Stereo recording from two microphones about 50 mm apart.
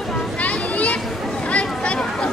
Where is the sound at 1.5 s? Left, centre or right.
Left.